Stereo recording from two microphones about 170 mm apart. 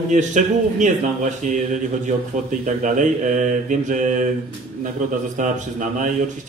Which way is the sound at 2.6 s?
50° right (ahead or behind).